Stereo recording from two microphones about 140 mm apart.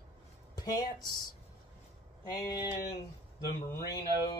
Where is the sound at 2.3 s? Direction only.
30° left (ahead or behind).